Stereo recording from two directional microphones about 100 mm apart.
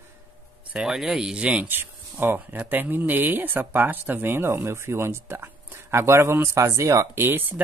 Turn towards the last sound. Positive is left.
turn(degrees=-20)  # may be behind; listen again after turning